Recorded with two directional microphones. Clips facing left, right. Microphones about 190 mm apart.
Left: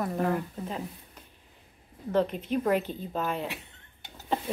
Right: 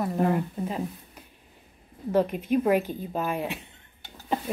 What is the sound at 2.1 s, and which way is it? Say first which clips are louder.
A woman's voice: right 3 dB; 10° right (ahead or behind).